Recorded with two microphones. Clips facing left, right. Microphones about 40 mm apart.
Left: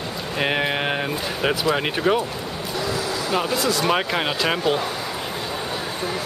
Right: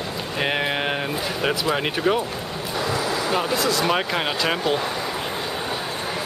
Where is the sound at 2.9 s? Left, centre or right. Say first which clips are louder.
Right 3 dB; centre.